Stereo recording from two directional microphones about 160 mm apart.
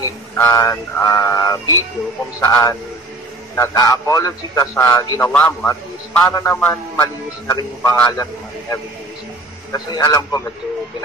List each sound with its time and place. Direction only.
0.0 s a man's voice: 20° left (ahead or behind)